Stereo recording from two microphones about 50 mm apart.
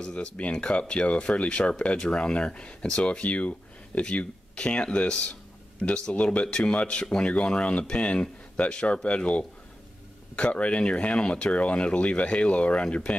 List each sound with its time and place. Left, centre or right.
0.0 s speech: left